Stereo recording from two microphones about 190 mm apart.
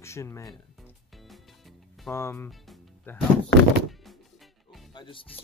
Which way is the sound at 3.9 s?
Centre (ahead or behind).